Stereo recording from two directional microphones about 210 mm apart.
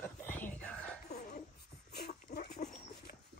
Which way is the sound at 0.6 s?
5° left (ahead or behind).